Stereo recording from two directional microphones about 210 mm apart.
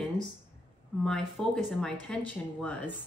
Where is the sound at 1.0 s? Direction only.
Centre (ahead or behind).